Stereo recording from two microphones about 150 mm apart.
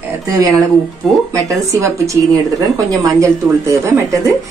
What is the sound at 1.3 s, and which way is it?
A woman's voice, 20° right (ahead or behind).